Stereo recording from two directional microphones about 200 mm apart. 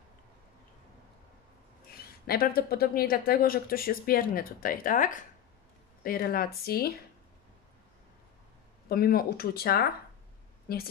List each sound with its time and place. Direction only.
1.9 s speech: 50° left (ahead or behind)
8.8 s speech: 50° left (ahead or behind)